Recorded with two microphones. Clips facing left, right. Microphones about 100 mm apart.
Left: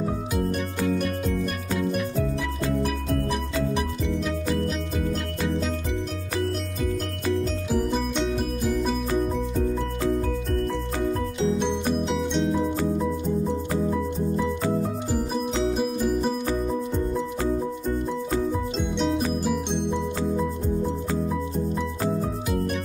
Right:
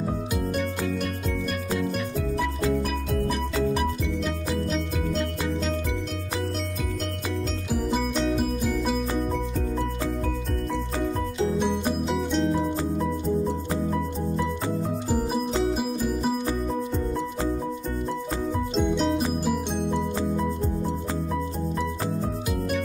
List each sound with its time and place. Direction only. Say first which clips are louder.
1.8 s music: left 6 dB; 5° left (ahead or behind)
12.1 s music: even; centre (ahead or behind)
15.5 s music: left 1 dB; 5° right (ahead or behind)
18.8 s music: right 3 dB; centre (ahead or behind)